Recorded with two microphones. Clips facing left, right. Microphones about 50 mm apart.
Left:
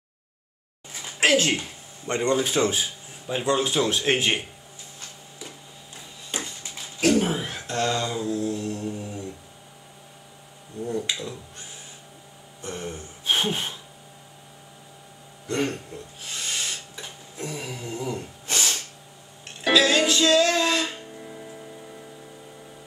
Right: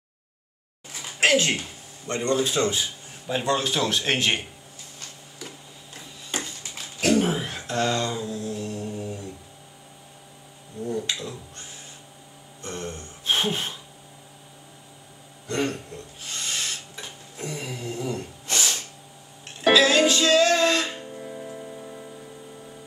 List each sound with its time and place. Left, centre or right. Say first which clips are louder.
2.0 s a man's voice: left 1 dB; left
2.6 s speech: left 1 dB; centre
7.0 s a sound: even; centre
11.0 s speech: even; centre
12.6 s gasp: even; centre
15.4 s owl: even; centre
19.4 s music: right 2 dB; centre